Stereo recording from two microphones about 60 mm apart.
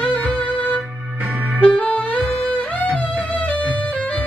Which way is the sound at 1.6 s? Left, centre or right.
Left.